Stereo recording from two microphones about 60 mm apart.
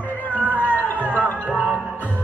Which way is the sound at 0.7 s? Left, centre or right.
Left.